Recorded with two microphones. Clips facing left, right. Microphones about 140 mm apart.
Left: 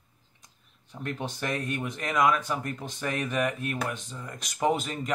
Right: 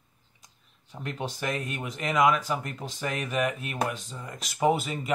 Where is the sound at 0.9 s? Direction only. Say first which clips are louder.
Even; 10° right (ahead or behind).